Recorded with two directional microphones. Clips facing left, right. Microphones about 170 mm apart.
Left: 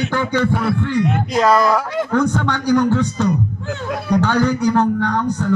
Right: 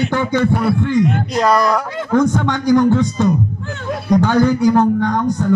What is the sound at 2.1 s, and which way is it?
Speech, 15° right (ahead or behind).